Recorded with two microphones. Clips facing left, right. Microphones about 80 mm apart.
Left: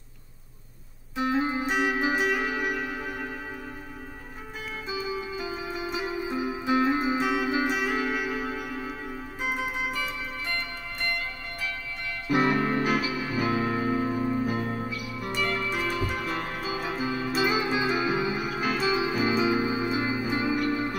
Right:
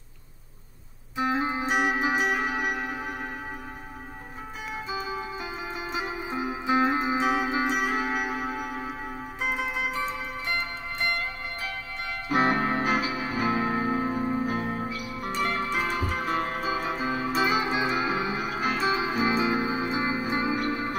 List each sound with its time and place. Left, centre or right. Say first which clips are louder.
1.2 s music: even; right
4.9 s zither: left 2 dB; right
5.9 s music: even; right
9.9 s zither: right 2 dB; right
12.3 s music: even; right
14.9 s music: right 1 dB; right